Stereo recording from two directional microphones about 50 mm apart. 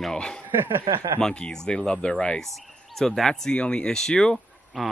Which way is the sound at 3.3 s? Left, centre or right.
Centre.